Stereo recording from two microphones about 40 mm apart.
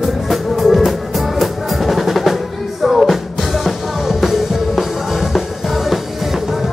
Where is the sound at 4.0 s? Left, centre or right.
Centre.